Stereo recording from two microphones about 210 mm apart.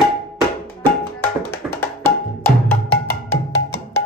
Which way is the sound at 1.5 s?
10° left (ahead or behind).